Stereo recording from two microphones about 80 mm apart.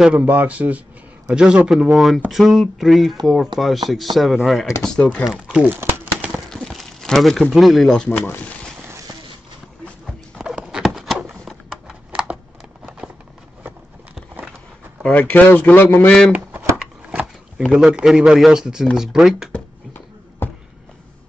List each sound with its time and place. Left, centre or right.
0.1 s speech: centre
1.7 s speech: centre
5.2 s speech: centre
6.5 s a sound: centre
7.5 s speech: centre
10.7 s horse: centre
11.2 s a sound: centre
15.0 s a man's voice: left
16.3 s speech: right
17.1 s a sound: centre
17.6 s speech: centre
19.9 s a sound: left